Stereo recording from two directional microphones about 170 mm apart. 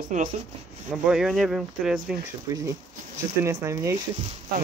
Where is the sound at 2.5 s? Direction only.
20° right (ahead or behind).